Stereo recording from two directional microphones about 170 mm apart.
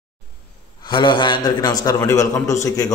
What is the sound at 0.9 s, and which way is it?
A man's voice, 30° left (ahead or behind).